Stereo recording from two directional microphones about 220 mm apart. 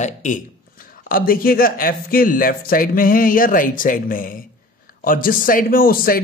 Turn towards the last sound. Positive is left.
turn(degrees=40)  # may be behind; listen again after turning